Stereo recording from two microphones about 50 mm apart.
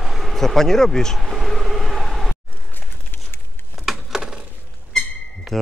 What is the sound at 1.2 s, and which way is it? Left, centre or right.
Vehicle, centre.